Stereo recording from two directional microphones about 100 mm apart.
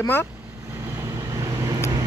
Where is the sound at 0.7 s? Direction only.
25° right (ahead or behind).